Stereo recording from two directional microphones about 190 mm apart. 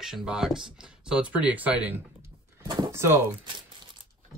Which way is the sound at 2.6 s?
25° right (ahead or behind).